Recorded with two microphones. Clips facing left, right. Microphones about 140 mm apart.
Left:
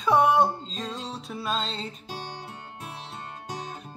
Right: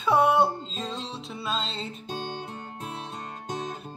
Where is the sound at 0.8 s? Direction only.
25° right (ahead or behind).